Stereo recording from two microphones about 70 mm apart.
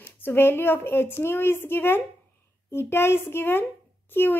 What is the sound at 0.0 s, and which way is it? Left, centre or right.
Speech, left.